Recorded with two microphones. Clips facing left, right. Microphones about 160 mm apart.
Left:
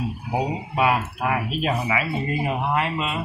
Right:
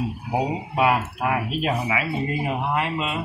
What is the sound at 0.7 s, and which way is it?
Speech, 5° right (ahead or behind).